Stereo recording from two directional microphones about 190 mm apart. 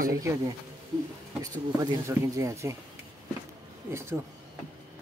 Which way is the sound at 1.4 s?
20° right (ahead or behind).